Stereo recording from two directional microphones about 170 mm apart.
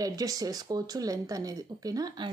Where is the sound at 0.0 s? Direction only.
20° right (ahead or behind).